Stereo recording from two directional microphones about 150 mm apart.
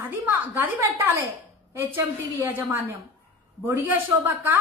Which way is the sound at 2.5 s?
15° right (ahead or behind).